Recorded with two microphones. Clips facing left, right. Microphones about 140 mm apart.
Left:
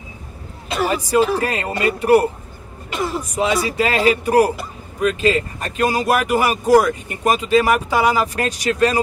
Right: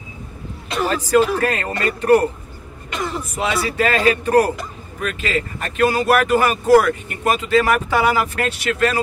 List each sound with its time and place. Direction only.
0.8 s speech: 15° left (ahead or behind)